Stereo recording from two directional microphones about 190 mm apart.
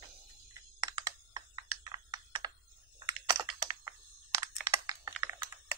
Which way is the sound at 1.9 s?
20° right (ahead or behind).